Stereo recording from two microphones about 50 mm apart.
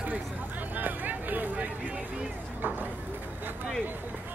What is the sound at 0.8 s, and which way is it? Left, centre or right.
Vehicle, right.